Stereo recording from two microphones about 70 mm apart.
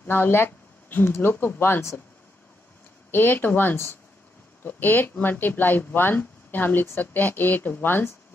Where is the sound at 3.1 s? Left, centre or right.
Left.